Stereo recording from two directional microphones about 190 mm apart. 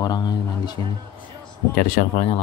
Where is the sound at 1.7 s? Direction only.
45° left (ahead or behind).